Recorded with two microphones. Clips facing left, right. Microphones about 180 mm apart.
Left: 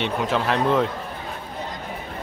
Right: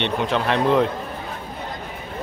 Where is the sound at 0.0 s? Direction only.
5° left (ahead or behind).